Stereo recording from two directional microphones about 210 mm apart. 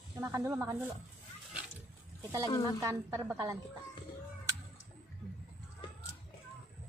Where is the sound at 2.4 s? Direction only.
15° left (ahead or behind).